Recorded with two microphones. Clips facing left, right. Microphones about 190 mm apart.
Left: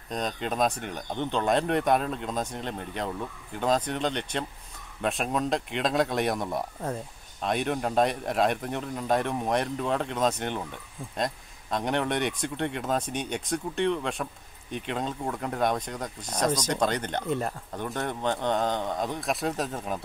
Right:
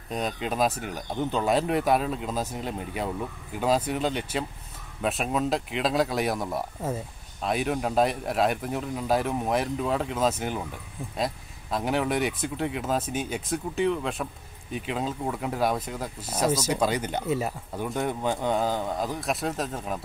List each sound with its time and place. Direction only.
0.1 s speech: 5° right (ahead or behind)